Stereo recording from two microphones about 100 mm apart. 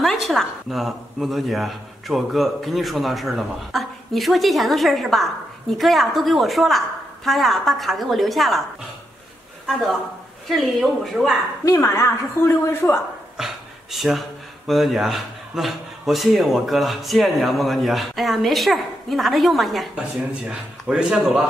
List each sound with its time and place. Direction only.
0.0 s a man's voice: centre (ahead or behind)
9.7 s a man's voice: 5° left (ahead or behind)
11.6 s a woman's voice: 30° left (ahead or behind)
13.4 s a man's voice: 5° right (ahead or behind)